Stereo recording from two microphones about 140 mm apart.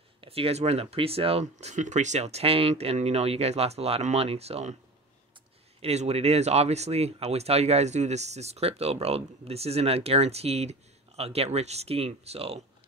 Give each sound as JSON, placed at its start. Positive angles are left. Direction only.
{"t": 0.2, "sound": "speech", "side_deg": -45}
{"t": 5.8, "sound": "speech", "side_deg": -50}